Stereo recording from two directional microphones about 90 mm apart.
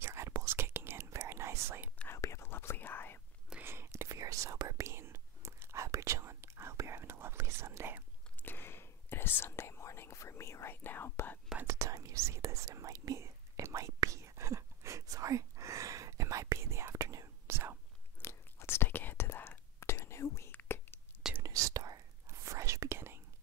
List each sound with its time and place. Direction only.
0.0 s whispering: 30° right (ahead or behind)
2.0 s whispering: 35° left (ahead or behind)
3.6 s whispering: 30° right (ahead or behind)
8.4 s whispering: 25° left (ahead or behind)
11.6 s whispering: 35° right (ahead or behind)
18.2 s whispering: 30° left (ahead or behind)
21.4 s whispering: 40° right (ahead or behind)